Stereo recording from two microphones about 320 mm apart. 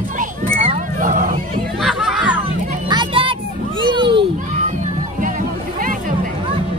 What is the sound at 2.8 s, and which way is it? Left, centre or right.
Children playing, centre.